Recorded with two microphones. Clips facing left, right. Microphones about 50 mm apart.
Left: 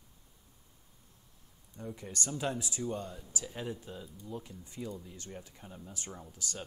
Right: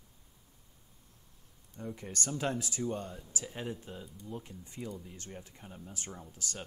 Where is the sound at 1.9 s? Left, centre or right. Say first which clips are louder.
Right 1 dB; right.